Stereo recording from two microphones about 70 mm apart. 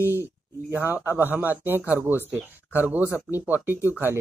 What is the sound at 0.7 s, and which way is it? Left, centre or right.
Speech, right.